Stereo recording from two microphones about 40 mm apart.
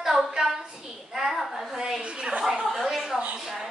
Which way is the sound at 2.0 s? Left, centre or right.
Right.